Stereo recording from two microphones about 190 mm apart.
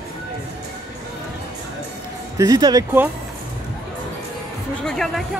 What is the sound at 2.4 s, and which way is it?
Speech, 20° right (ahead or behind).